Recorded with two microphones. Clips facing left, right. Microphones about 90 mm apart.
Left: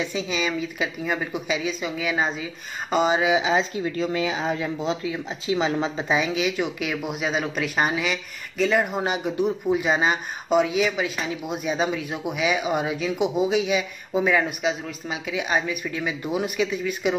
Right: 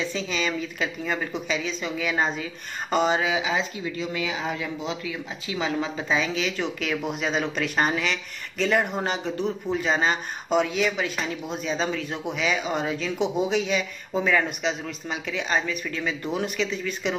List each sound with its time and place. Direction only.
0.0 s speech: 10° left (ahead or behind)
3.2 s speech: 20° left (ahead or behind)
3.8 s speech: 40° left (ahead or behind)
6.1 s speech: 10° left (ahead or behind)